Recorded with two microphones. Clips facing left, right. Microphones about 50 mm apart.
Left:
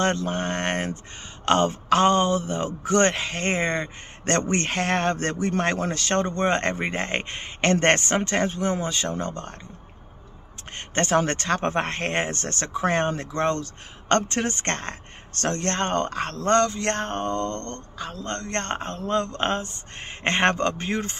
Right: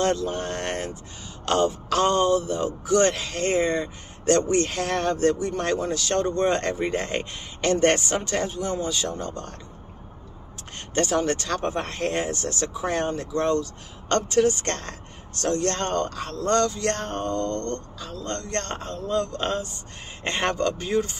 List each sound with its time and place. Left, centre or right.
0.0 s a man's voice: left
11.0 s a man's voice: left
15.3 s a man's voice: left